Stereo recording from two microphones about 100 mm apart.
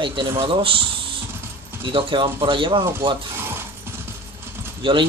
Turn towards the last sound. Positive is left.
turn(degrees=-60)  # may be behind; listen again after turning